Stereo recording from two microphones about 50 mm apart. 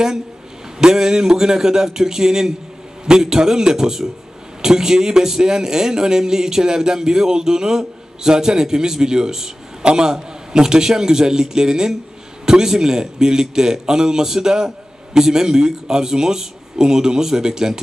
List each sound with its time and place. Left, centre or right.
0.7 s a man's voice: centre